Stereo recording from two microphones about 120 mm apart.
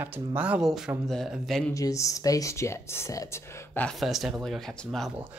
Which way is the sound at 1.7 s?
25° left (ahead or behind).